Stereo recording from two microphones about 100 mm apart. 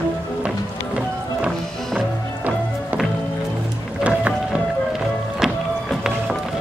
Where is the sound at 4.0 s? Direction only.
10° right (ahead or behind).